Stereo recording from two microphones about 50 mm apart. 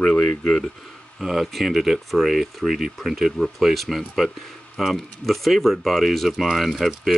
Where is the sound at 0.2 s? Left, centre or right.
Centre.